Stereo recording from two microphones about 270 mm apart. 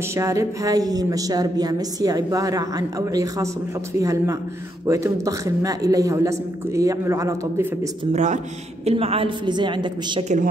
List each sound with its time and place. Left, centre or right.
0.1 s a woman's voice: centre
8.1 s a woman's voice: right